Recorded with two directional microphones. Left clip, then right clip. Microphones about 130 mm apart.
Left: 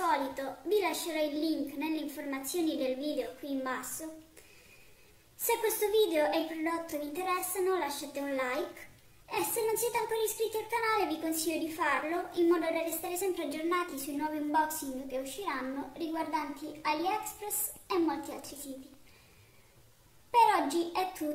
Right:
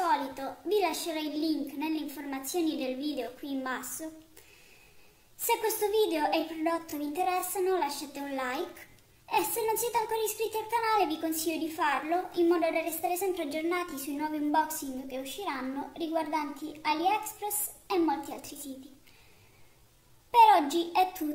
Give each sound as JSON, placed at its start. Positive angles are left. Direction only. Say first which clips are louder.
{"t": 0.0, "sound": "a woman's voice", "louder": "right 2 dB", "side_deg": -40}
{"t": 5.5, "sound": "speech", "louder": "right 1 dB", "side_deg": -40}
{"t": 20.2, "sound": "a child's voice", "louder": "right 5 dB", "side_deg": -45}